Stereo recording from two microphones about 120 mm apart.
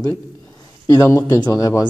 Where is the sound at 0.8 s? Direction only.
30° left (ahead or behind).